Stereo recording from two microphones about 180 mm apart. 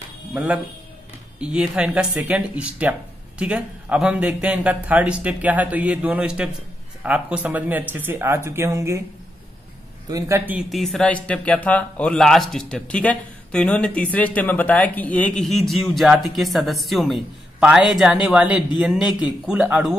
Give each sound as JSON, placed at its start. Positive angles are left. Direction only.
{"t": 0.3, "sound": "speech", "side_deg": -5}
{"t": 10.0, "sound": "speech", "side_deg": -20}
{"t": 10.8, "sound": "speech", "side_deg": 0}